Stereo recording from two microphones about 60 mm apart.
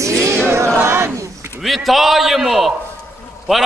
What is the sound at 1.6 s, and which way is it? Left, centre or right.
A man's voice, centre.